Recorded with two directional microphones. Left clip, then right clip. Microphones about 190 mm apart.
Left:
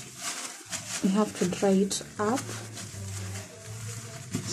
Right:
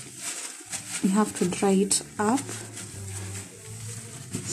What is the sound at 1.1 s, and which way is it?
Speech, 20° right (ahead or behind).